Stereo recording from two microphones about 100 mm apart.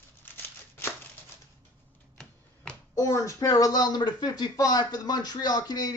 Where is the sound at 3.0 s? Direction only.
30° left (ahead or behind).